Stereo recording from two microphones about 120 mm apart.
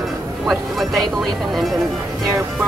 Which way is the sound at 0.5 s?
Centre (ahead or behind).